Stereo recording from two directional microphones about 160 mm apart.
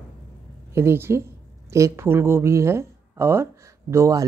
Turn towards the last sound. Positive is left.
turn(degrees=-20)  # may be behind; listen again after turning